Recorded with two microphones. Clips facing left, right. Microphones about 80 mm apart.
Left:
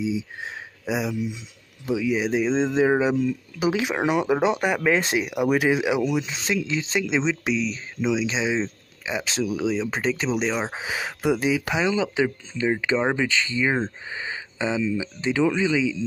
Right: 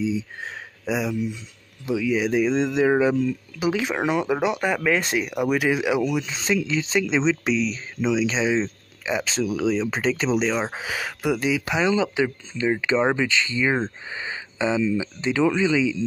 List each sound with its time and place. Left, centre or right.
0.0 s speech: centre
3.0 s speech: centre
5.2 s speech: centre